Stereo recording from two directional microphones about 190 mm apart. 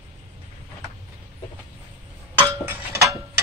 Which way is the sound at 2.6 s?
15° right (ahead or behind).